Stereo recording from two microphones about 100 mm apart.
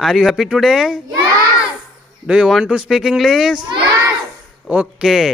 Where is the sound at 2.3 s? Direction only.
5° right (ahead or behind).